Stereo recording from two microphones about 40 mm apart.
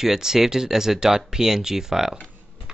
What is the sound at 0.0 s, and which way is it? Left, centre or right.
Speech, centre.